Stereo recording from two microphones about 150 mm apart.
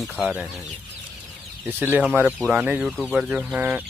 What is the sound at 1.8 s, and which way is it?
Speech, 10° right (ahead or behind).